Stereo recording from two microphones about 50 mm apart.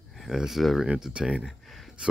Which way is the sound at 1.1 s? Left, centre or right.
Centre.